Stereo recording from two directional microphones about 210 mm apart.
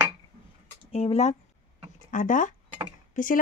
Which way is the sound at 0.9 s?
30° left (ahead or behind).